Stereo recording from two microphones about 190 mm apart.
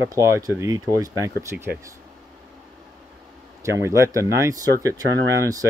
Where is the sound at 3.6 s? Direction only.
15° right (ahead or behind).